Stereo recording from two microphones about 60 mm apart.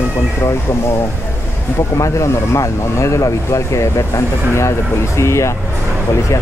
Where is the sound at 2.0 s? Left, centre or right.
Left.